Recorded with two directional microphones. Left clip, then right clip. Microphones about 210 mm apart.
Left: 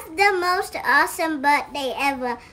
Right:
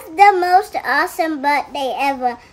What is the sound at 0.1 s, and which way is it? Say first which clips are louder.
A child's voice: right 8 dB; 15° right (ahead or behind).